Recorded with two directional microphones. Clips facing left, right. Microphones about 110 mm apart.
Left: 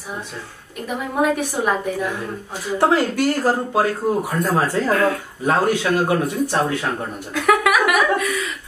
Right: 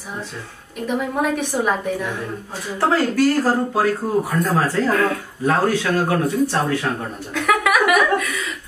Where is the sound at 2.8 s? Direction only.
20° left (ahead or behind).